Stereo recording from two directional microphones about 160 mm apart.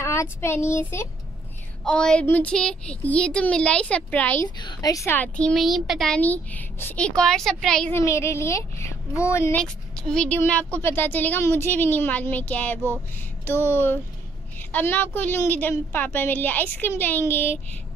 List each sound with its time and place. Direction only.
0.0 s speech: 15° left (ahead or behind)
1.9 s speech: 5° left (ahead or behind)
4.6 s speech: 25° left (ahead or behind); by 7.9 s 5° left (ahead or behind)
7.9 s speech: 15° left (ahead or behind)
9.6 s speech: 5° left (ahead or behind)